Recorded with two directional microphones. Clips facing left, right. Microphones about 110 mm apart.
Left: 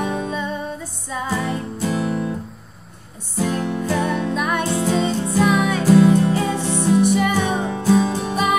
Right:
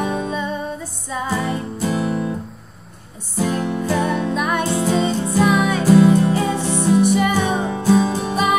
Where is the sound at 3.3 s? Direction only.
15° right (ahead or behind).